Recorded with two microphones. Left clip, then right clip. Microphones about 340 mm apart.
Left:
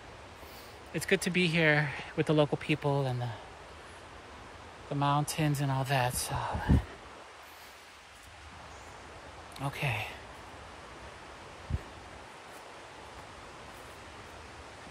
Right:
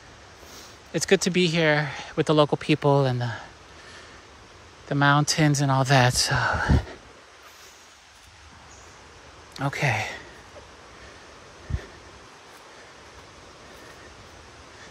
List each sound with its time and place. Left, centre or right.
0.9 s speech: centre
4.8 s speech: right
5.3 s speech: centre
6.0 s speech: right
9.6 s speech: right